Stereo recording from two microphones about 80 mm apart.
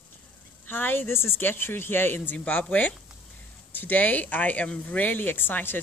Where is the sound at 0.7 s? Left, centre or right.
Left.